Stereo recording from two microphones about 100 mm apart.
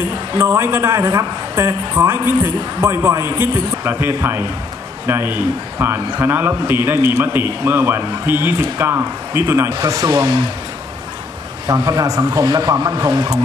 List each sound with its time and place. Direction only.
0.4 s a man's voice: 25° right (ahead or behind)
11.6 s a man's voice: 35° right (ahead or behind)